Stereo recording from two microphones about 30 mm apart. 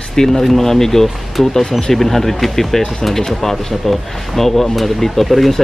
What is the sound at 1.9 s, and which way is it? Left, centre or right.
Speech, centre.